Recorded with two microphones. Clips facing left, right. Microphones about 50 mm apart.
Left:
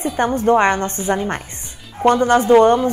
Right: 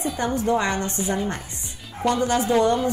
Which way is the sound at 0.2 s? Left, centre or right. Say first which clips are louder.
Left 8 dB; left.